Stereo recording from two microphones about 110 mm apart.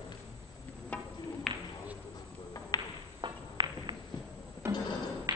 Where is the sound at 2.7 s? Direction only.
35° left (ahead or behind).